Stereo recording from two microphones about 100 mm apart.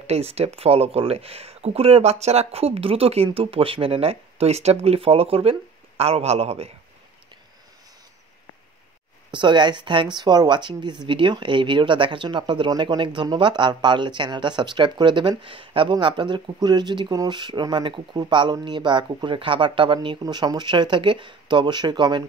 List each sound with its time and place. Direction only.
0.0 s speech: 90° right
3.3 s speech: 70° right (ahead or behind); by 6.7 s 90° right
9.3 s speech: 50° right (ahead or behind)